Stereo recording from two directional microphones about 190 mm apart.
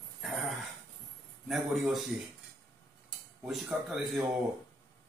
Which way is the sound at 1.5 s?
Centre (ahead or behind).